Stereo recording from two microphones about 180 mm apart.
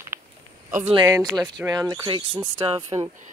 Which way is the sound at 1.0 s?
20° right (ahead or behind).